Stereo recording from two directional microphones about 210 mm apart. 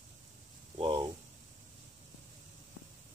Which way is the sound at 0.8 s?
25° right (ahead or behind).